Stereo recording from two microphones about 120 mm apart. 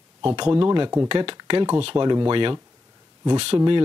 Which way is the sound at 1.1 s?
40° right (ahead or behind).